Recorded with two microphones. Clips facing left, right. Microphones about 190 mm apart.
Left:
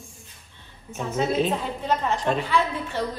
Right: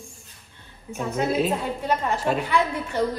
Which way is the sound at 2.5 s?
15° right (ahead or behind).